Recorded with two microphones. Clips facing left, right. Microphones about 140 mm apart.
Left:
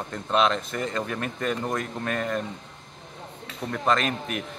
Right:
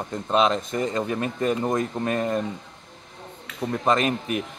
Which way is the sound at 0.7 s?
15° right (ahead or behind).